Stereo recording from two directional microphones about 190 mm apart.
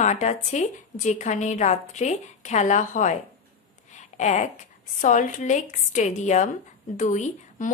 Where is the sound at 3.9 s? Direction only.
40° left (ahead or behind).